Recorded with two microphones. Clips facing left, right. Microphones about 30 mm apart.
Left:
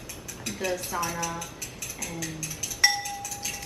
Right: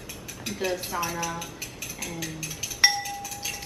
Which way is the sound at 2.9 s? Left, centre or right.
Centre.